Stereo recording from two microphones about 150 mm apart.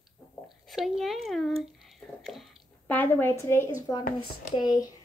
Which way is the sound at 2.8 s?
10° left (ahead or behind).